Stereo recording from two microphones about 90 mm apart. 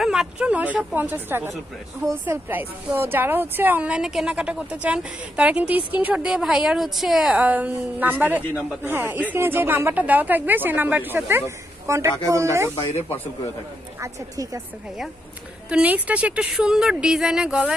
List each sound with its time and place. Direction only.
0.0 s a woman's voice: 5° right (ahead or behind)
7.4 s a woman's voice: 15° right (ahead or behind)
14.0 s a woman's voice: 40° right (ahead or behind)
15.7 s a woman's voice: 15° right (ahead or behind)